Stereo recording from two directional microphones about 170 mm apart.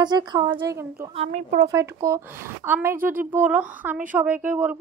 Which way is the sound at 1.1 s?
40° right (ahead or behind).